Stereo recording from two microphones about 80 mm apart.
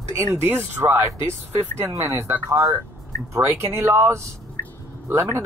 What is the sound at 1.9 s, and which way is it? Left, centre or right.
Speech, right.